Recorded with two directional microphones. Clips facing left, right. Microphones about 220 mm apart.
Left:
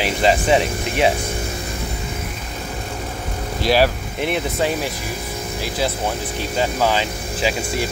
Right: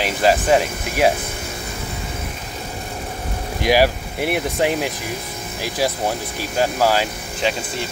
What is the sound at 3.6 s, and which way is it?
Speech, 15° right (ahead or behind).